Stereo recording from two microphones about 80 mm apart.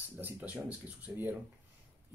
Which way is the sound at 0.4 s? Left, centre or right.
Centre.